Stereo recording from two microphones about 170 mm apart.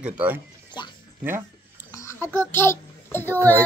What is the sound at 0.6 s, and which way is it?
Music, 25° left (ahead or behind).